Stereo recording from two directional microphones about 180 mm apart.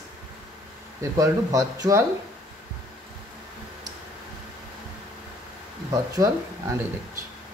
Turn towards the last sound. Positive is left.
turn(degrees=-20)  # may be behind; listen again after turning